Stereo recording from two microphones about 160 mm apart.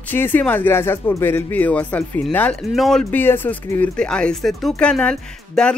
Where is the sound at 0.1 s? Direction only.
10° left (ahead or behind).